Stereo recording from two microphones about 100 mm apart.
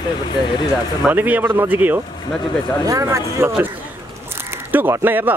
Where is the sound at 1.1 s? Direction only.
20° right (ahead or behind).